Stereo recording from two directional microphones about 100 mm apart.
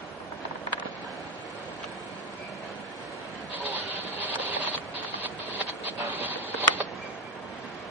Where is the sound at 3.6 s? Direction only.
20° right (ahead or behind).